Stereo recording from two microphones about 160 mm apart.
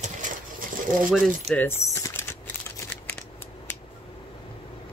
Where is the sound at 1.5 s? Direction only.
15° left (ahead or behind).